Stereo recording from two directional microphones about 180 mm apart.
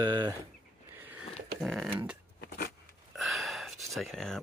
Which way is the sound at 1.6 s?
Centre (ahead or behind).